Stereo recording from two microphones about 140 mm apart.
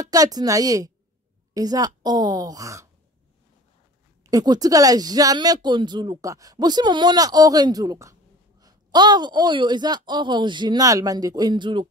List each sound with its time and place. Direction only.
0.0 s speech: 25° right (ahead or behind)
4.2 s speech: 25° right (ahead or behind)